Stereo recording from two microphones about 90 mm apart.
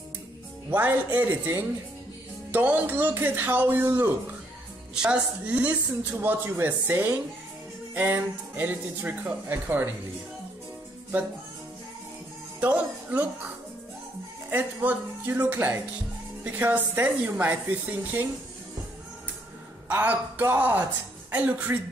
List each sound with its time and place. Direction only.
0.7 s speech: 20° right (ahead or behind)
4.9 s speech: 10° right (ahead or behind)
12.5 s speech: 15° right (ahead or behind)
14.5 s speech: 20° right (ahead or behind)
19.9 s speech: 20° right (ahead or behind)